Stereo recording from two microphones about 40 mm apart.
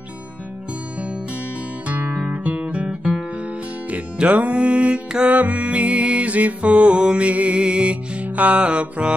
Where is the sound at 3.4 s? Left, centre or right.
Right.